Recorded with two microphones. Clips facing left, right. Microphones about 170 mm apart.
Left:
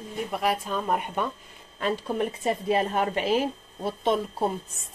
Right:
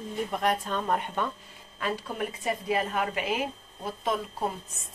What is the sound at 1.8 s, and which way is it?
A woman's voice, 25° left (ahead or behind).